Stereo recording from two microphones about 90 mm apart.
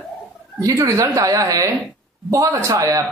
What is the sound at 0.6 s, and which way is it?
Speech, 35° right (ahead or behind).